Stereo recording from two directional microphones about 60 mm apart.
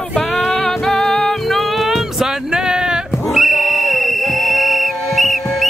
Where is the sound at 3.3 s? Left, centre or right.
Centre.